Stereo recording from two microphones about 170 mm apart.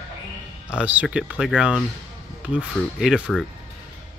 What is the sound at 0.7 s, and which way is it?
Speech, 5° right (ahead or behind).